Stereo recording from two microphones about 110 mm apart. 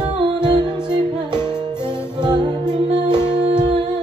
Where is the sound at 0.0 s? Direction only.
40° right (ahead or behind).